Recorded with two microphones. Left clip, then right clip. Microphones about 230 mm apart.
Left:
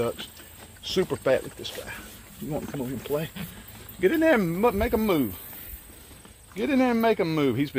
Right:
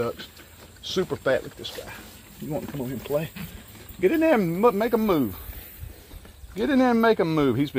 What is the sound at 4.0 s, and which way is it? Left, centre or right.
Speech, centre.